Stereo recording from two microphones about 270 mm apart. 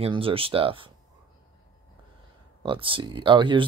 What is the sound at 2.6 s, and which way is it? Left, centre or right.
Speech, centre.